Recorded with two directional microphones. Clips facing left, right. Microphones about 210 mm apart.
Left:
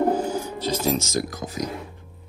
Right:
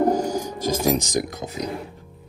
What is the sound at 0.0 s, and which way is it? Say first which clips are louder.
Music: right 2 dB; 10° right (ahead or behind).